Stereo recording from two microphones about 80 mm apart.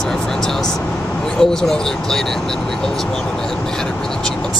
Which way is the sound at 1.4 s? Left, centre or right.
Centre.